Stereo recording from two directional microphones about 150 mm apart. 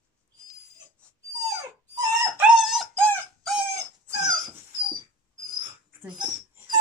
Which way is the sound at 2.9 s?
10° left (ahead or behind).